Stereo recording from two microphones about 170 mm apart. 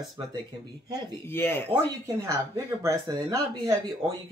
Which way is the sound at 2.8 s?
15° right (ahead or behind).